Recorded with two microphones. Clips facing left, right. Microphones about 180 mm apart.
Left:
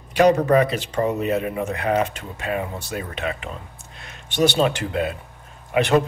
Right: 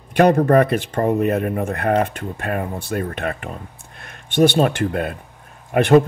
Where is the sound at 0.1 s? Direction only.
55° right (ahead or behind).